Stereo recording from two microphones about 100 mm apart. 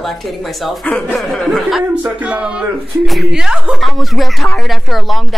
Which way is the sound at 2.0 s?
15° right (ahead or behind).